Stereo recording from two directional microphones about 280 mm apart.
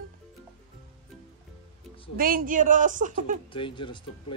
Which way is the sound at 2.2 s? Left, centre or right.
Right.